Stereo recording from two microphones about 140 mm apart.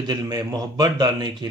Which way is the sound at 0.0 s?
25° right (ahead or behind).